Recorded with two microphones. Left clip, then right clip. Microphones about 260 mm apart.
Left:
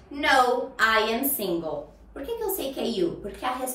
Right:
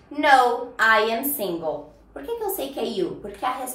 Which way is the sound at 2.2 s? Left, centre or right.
Centre.